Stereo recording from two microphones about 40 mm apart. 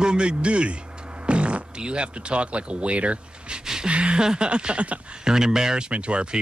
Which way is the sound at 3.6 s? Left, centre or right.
Centre.